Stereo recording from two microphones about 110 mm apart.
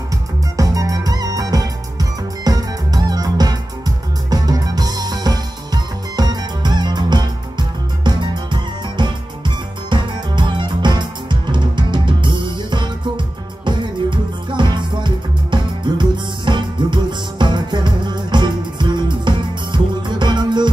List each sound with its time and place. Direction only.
0.6 s music: 35° right (ahead or behind)